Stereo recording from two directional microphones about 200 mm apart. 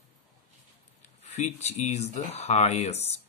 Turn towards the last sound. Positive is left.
turn(degrees=35)  # may be behind; listen again after turning